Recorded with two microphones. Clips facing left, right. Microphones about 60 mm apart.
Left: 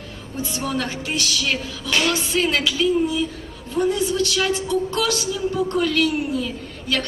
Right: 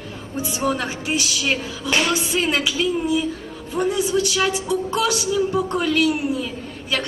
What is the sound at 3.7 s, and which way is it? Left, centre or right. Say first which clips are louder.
Speech: even; centre.